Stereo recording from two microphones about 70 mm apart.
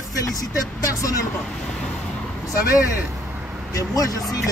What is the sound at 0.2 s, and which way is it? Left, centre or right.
Speech, left.